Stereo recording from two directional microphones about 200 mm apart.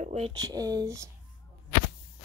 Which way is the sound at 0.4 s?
20° right (ahead or behind).